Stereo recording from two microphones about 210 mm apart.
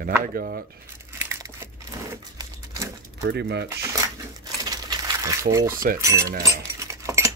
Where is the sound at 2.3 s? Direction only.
15° right (ahead or behind).